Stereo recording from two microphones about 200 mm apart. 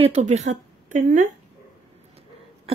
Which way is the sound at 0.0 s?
35° right (ahead or behind).